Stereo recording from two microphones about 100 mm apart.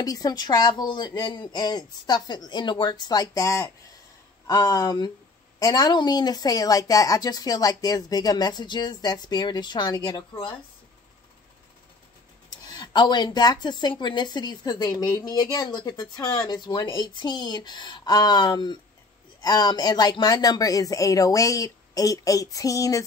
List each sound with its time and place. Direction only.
0.0 s speech: 40° left (ahead or behind)
12.4 s speech: 45° left (ahead or behind)